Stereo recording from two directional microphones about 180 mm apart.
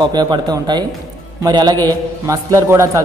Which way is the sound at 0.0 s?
25° right (ahead or behind).